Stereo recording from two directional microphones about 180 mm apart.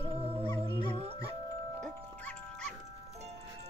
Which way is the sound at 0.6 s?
35° right (ahead or behind).